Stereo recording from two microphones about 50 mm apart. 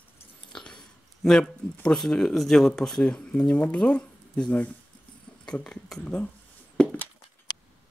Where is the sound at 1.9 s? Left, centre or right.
Centre.